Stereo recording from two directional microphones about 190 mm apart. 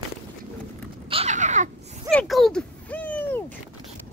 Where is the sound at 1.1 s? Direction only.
35° right (ahead or behind).